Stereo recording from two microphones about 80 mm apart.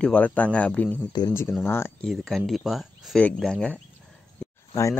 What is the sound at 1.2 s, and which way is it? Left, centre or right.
Speech, left.